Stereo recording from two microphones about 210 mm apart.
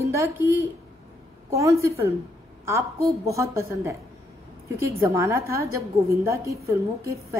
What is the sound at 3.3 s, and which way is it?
A woman's voice, 15° right (ahead or behind).